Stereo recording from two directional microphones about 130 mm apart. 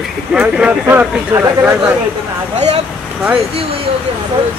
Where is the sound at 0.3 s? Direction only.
5° right (ahead or behind).